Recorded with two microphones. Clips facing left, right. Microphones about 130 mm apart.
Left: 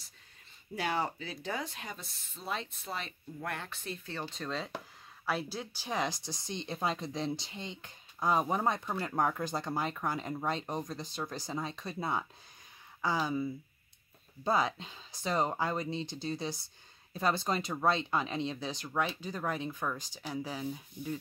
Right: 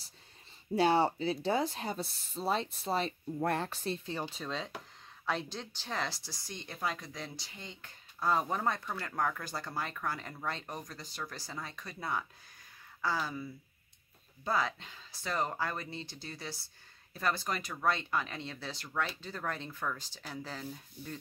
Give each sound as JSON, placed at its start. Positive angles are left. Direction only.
{"t": 0.7, "sound": "speech", "side_deg": -30}
{"t": 4.0, "sound": "speech", "side_deg": -15}
{"t": 4.4, "sound": "speech", "side_deg": 0}